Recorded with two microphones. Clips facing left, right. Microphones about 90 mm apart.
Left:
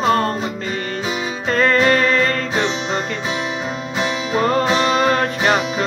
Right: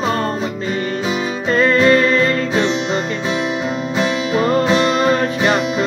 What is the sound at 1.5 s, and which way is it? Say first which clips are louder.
Music: right 3 dB; 50° left (ahead or behind).